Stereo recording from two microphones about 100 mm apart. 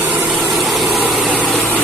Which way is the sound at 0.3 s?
5° right (ahead or behind).